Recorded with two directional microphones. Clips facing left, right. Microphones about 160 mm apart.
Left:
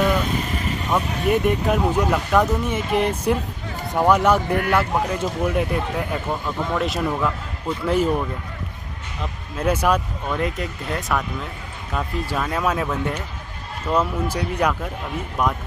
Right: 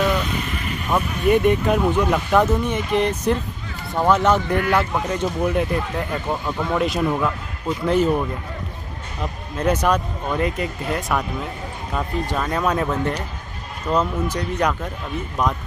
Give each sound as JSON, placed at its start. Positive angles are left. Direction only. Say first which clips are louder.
{"t": 0.3, "sound": "vehicle", "louder": "left 2 dB", "side_deg": 35}
{"t": 0.8, "sound": "speech", "louder": "right 3 dB", "side_deg": 0}
{"t": 7.8, "sound": "speech", "louder": "right 2 dB", "side_deg": 5}
{"t": 9.6, "sound": "speech", "louder": "right 1 dB", "side_deg": 5}